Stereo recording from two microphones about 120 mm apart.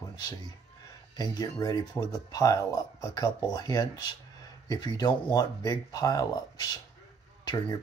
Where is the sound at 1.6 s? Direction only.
30° left (ahead or behind).